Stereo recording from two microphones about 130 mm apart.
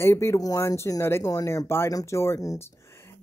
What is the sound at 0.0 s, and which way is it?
Speech, 20° left (ahead or behind).